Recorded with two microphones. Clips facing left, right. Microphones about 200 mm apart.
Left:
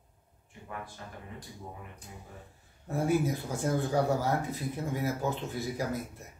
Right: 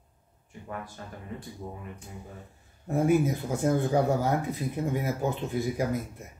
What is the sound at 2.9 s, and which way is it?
Speech, 15° right (ahead or behind).